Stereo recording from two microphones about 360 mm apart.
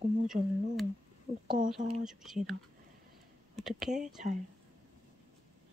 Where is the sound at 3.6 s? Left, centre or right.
Centre.